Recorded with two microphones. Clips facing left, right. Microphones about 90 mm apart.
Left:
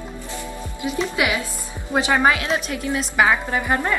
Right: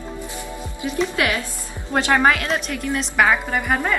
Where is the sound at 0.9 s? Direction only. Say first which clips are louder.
Right 1 dB; 10° left (ahead or behind).